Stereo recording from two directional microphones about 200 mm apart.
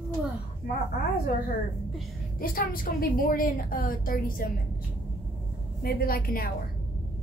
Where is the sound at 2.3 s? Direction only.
45° left (ahead or behind).